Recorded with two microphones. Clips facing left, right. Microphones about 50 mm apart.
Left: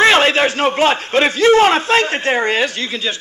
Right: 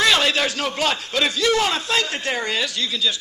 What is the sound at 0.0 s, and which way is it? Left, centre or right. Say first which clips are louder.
A man's voice: left 7 dB; left.